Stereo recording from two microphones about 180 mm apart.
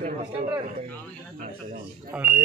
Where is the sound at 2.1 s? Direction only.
5° right (ahead or behind).